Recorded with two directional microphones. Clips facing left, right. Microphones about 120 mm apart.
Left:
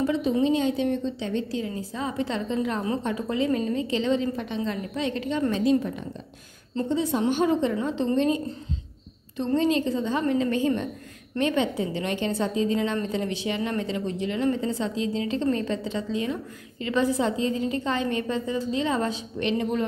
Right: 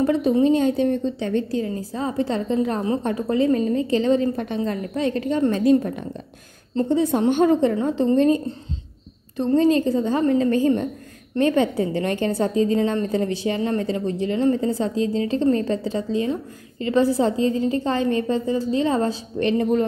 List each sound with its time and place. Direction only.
0.0 s a sound: 50° right (ahead or behind)
0.3 s a woman's voice: 45° right (ahead or behind)
9.6 s a woman's voice: 40° right (ahead or behind)